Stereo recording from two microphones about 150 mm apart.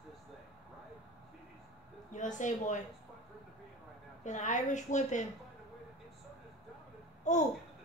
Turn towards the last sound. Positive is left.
turn(degrees=55)  # may be behind; listen again after turning